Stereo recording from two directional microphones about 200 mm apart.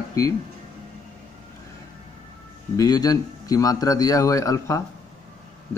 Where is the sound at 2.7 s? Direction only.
20° left (ahead or behind).